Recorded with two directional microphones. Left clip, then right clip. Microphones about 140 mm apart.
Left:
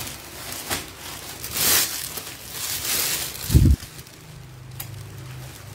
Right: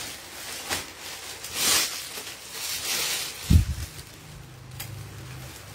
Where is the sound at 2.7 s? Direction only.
90° left.